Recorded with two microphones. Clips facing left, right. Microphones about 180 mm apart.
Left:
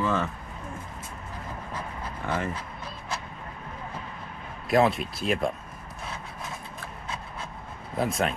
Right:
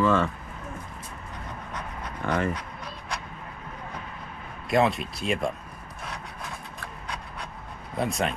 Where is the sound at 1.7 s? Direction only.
30° left (ahead or behind).